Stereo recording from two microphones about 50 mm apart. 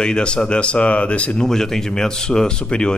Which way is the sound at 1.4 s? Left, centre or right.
Centre.